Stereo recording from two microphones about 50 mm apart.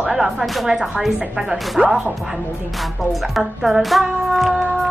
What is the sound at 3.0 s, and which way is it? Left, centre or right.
A woman's voice, centre.